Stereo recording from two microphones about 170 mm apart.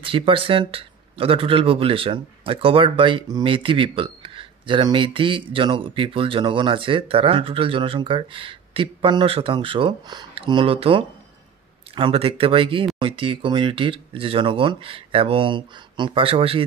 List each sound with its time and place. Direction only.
0.0 s speech: 30° right (ahead or behind)